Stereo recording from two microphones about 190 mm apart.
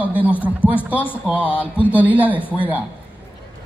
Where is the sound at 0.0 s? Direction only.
10° right (ahead or behind).